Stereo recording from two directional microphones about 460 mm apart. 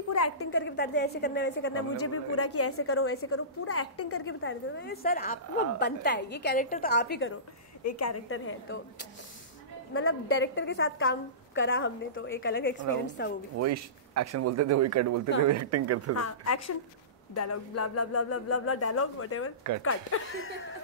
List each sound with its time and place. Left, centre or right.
0.1 s a woman's voice: left
7.8 s speech: left
9.9 s a woman's voice: left
13.6 s speech: right
16.2 s a woman's voice: left